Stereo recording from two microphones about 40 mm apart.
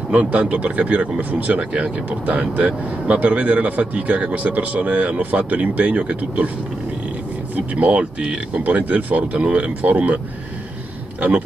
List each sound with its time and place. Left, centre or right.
0.1 s speech: right
7.7 s speech: right
8.0 s speech: right
8.6 s speech: right